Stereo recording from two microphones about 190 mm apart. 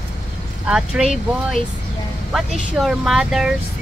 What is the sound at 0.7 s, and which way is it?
Speech, 5° right (ahead or behind).